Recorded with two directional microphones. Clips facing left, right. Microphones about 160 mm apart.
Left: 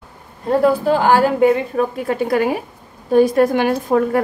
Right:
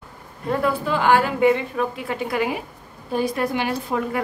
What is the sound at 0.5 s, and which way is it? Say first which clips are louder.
A woman's voice: left 7 dB; 40° left (ahead or behind).